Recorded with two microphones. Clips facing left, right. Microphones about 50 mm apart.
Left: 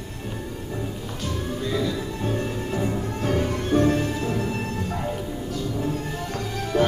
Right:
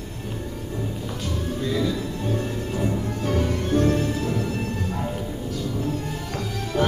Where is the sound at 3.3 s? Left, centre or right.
Centre.